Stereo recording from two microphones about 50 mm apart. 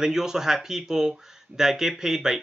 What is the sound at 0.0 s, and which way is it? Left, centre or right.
Speech, centre.